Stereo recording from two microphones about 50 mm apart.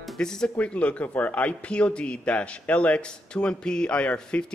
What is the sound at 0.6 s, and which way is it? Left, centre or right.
A man's voice, left.